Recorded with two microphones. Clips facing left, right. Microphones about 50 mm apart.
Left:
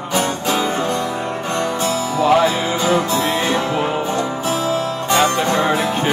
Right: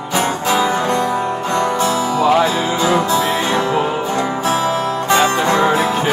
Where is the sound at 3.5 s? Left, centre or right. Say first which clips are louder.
Right 2 dB; right.